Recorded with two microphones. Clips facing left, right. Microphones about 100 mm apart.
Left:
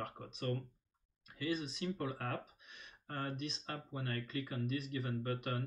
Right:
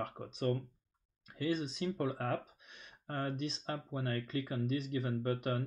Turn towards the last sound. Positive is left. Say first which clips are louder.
# right 4 dB
turn(degrees=-35)  # may be behind; listen again after turning